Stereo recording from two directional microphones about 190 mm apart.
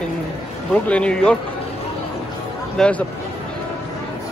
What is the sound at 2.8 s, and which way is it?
Speech, 5° left (ahead or behind).